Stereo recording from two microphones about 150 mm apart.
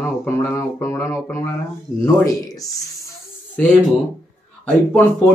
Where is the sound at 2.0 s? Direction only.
20° left (ahead or behind).